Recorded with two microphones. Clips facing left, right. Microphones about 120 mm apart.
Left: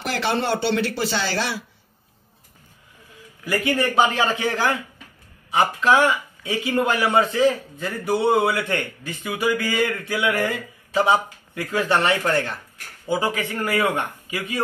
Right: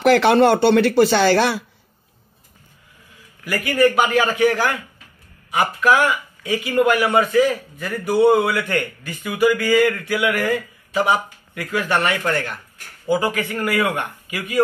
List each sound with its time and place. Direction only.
0.0 s speech: 60° right (ahead or behind)
3.4 s speech: 20° left (ahead or behind)